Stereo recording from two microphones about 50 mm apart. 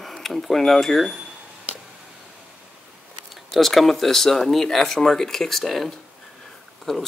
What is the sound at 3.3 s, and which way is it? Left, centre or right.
Speech, centre.